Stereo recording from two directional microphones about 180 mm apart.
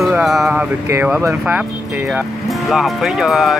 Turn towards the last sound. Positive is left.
turn(degrees=0)  # may be behind; listen again after turning